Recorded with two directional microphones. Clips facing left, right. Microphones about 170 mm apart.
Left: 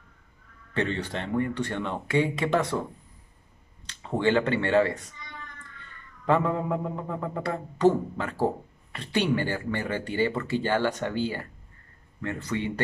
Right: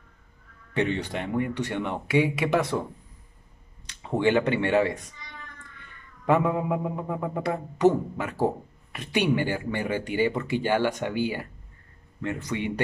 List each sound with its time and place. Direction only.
0.7 s speech: 15° right (ahead or behind)
3.8 s speech: 15° right (ahead or behind)
6.2 s speech: 15° right (ahead or behind)